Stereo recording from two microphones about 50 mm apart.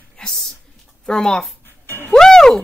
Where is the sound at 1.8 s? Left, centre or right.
Left.